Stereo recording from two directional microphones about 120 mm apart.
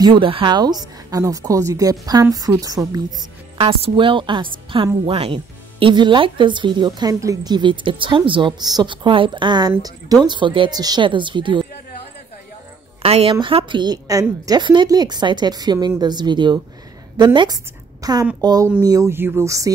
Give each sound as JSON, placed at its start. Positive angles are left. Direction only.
{"t": 0.0, "sound": "speech", "side_deg": -45}
{"t": 3.5, "sound": "a woman's voice", "side_deg": -50}
{"t": 13.0, "sound": "speech", "side_deg": -55}